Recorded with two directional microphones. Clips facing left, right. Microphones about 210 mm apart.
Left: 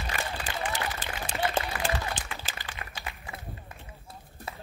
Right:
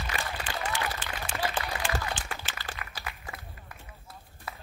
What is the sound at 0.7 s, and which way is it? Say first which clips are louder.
Applause: even; 40° left (ahead or behind).